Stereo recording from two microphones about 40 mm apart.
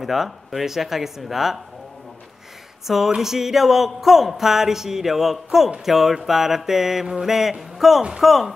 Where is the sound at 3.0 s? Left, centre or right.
Centre.